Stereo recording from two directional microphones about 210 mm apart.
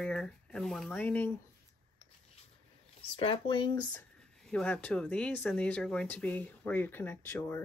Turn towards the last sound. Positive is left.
turn(degrees=10)  # may be behind; listen again after turning